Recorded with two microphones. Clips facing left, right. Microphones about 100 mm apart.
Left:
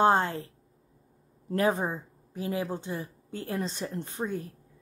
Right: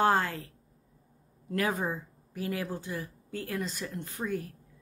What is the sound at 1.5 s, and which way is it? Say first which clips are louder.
Speech: left 4 dB; 30° left (ahead or behind).